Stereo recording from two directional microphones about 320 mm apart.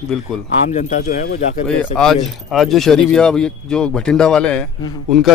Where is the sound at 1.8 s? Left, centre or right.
Centre.